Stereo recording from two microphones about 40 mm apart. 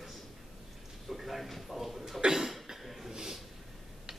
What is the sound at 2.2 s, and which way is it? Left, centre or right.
Cough, centre.